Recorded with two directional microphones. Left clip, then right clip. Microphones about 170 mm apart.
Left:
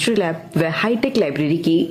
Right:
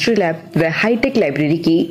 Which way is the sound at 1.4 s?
40° left (ahead or behind).